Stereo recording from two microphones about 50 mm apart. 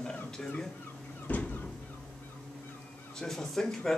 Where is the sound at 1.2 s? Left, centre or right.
Left.